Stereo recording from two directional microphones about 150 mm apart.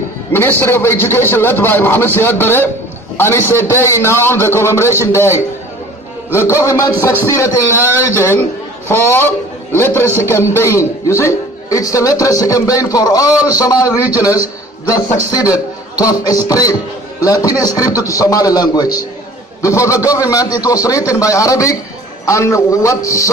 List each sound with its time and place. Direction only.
0.3 s a man's voice: 15° left (ahead or behind)